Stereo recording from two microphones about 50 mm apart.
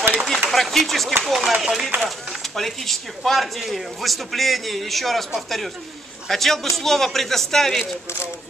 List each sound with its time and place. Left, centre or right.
0.3 s a sound: centre
1.3 s speech: centre
7.8 s speech: left